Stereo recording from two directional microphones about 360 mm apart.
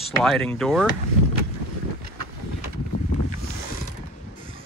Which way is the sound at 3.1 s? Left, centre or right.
Centre.